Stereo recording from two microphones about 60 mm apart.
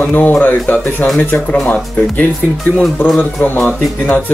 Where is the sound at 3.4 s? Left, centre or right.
Left.